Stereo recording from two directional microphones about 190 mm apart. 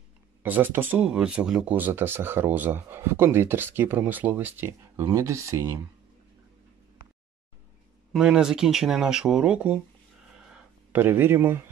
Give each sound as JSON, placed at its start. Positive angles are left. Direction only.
{"t": 0.4, "sound": "speech", "side_deg": -10}
{"t": 8.1, "sound": "speech", "side_deg": -5}
{"t": 10.9, "sound": "speech", "side_deg": -10}